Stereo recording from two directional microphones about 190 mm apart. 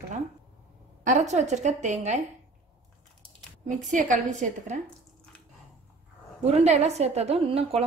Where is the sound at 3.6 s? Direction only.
40° right (ahead or behind).